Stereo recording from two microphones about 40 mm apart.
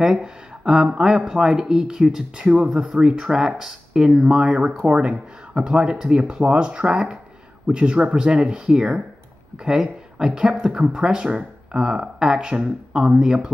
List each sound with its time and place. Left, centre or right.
0.0 s speech: centre
2.3 s speech: right
4.6 s speech: right